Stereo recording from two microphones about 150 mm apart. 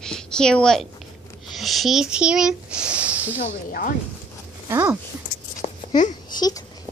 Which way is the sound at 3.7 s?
70° left (ahead or behind).